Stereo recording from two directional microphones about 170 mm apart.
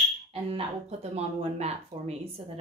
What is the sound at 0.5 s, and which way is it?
Speech, 40° right (ahead or behind).